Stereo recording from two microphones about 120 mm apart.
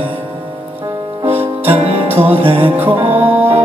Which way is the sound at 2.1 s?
15° right (ahead or behind).